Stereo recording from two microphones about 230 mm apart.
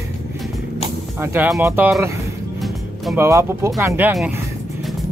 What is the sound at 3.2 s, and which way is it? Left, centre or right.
Speech, centre.